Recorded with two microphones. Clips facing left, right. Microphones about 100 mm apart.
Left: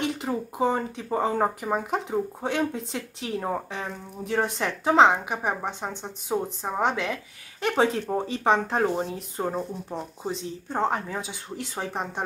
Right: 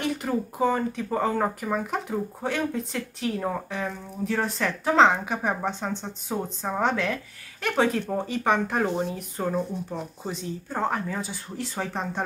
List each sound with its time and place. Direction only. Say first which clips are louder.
0.0 s speech: right 1 dB; 20° left (ahead or behind)